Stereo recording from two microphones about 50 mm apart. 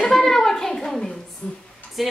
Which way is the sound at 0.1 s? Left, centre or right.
Centre.